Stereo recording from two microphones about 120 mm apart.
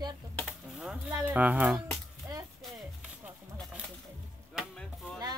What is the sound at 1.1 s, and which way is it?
Speech, 10° right (ahead or behind).